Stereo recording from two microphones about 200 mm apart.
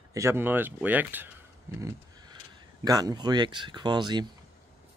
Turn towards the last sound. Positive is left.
turn(degrees=-20)  # may be behind; listen again after turning